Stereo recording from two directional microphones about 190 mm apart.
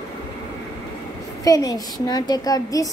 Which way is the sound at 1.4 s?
20° left (ahead or behind).